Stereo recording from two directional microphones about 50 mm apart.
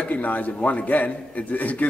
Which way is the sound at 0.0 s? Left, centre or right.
Left.